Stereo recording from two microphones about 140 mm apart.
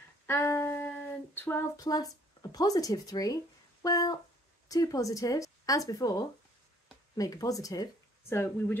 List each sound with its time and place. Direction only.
0.3 s child singing: 15° left (ahead or behind)
1.9 s speech: 25° left (ahead or behind)